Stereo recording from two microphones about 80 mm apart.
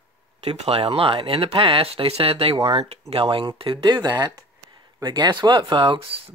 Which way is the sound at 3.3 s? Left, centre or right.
Right.